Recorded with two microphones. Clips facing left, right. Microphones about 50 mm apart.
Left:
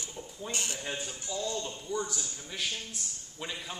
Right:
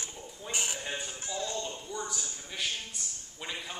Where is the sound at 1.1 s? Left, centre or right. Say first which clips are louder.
Left 1 dB; right.